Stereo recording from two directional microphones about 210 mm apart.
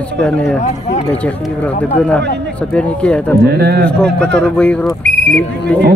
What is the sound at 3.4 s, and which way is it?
Speech, 45° right (ahead or behind).